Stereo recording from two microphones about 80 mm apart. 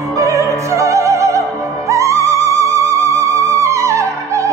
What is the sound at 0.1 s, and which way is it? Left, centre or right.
Music, right.